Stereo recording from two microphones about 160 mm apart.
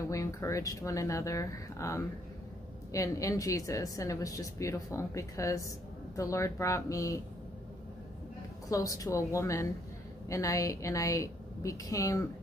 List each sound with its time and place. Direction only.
0.1 s a woman's voice: 20° left (ahead or behind)
8.6 s a woman's voice: 20° left (ahead or behind)